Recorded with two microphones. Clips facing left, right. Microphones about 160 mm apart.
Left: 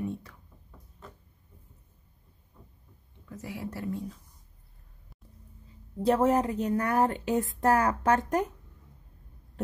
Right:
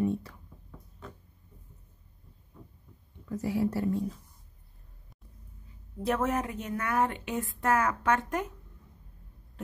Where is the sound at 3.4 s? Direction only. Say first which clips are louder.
Right 8 dB; 35° right (ahead or behind).